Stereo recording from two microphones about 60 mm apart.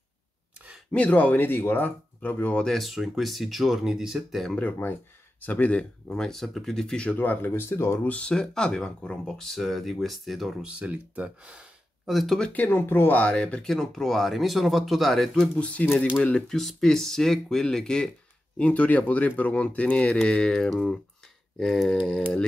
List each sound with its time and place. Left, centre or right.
0.9 s speech: left
2.6 s speech: centre
4.6 s speech: left
6.0 s speech: centre
7.2 s speech: left
8.1 s speech: centre
10.6 s speech: centre
12.1 s speech: centre
12.5 s speech: left
13.2 s speech: centre
13.7 s speech: centre
15.6 s speech: left
16.3 s speech: centre
18.6 s speech: left